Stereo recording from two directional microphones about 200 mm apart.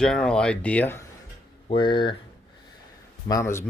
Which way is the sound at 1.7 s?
25° left (ahead or behind).